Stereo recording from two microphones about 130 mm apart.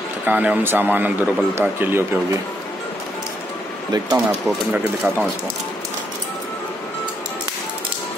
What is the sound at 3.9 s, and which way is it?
Speech, 30° right (ahead or behind).